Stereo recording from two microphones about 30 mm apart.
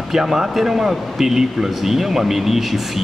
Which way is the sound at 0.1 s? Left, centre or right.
Centre.